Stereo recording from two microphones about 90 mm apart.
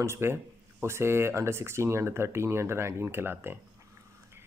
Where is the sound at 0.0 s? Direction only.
30° right (ahead or behind).